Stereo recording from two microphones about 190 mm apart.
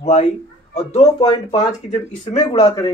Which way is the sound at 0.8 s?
30° left (ahead or behind).